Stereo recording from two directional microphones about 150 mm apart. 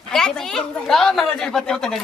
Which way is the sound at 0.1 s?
5° left (ahead or behind).